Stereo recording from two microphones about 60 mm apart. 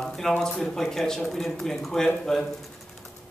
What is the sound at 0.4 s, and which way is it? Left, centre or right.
Speech, centre.